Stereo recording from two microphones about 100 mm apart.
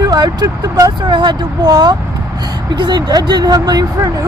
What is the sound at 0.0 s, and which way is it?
Speech, 45° right (ahead or behind).